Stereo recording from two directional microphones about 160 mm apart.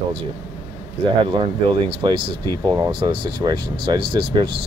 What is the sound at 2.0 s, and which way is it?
Speech, 25° right (ahead or behind).